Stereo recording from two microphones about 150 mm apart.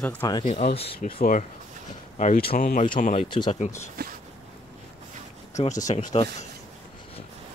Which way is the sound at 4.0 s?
90° right.